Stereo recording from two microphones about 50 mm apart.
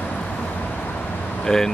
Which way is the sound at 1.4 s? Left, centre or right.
Centre.